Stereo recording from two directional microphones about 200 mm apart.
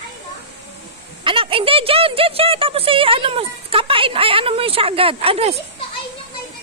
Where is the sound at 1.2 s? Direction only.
25° right (ahead or behind).